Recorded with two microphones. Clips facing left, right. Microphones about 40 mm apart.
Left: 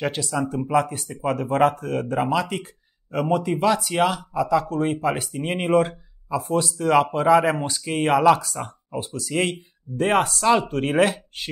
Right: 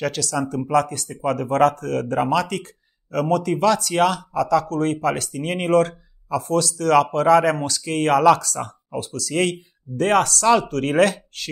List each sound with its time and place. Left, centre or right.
0.0 s speech: left